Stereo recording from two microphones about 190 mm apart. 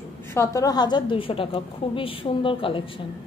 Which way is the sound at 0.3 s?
15° left (ahead or behind).